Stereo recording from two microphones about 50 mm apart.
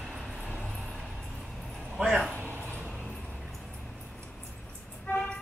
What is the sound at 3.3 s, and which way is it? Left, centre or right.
Vehicle, centre.